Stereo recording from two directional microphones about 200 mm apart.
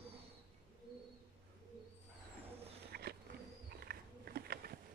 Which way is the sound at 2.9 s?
50° right (ahead or behind).